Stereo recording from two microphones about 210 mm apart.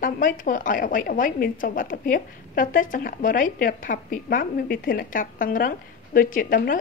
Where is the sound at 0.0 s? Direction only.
40° left (ahead or behind).